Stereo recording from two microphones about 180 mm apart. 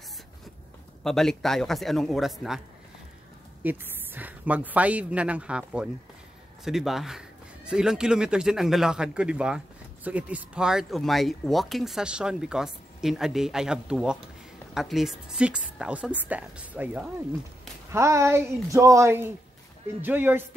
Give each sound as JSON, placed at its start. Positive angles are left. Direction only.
{"t": 1.0, "sound": "speech", "side_deg": 0}
{"t": 3.6, "sound": "speech", "side_deg": -10}